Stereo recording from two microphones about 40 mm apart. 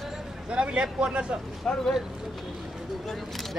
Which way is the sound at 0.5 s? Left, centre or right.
Right.